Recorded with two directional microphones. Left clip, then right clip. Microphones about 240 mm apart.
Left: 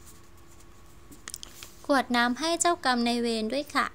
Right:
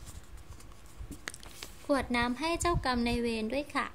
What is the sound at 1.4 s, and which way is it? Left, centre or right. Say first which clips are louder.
A woman's voice: left 2 dB; left.